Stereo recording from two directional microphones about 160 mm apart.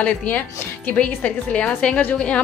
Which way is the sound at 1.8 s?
5° left (ahead or behind).